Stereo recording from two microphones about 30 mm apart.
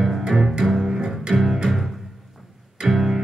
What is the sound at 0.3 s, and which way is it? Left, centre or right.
Music, centre.